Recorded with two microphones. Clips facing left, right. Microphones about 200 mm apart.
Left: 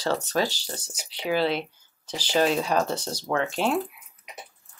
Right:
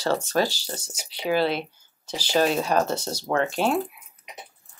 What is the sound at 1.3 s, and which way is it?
Speech, 40° right (ahead or behind).